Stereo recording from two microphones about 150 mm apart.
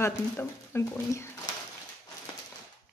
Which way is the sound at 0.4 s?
15° left (ahead or behind).